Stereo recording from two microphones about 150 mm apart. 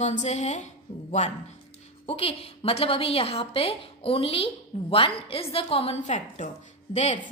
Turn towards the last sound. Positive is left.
turn(degrees=50)  # may be behind; listen again after turning